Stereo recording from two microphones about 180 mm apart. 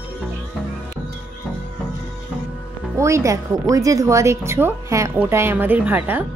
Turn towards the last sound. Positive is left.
turn(degrees=-10)  # may be behind; listen again after turning